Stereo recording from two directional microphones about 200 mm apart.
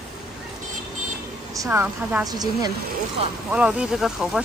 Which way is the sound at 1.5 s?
15° right (ahead or behind).